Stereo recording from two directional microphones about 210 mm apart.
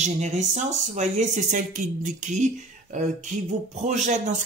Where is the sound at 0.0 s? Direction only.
35° right (ahead or behind).